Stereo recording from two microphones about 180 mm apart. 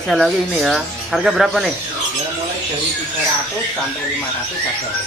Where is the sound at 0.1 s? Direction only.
Centre (ahead or behind).